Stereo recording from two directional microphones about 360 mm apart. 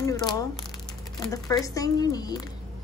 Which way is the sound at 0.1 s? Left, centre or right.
Centre.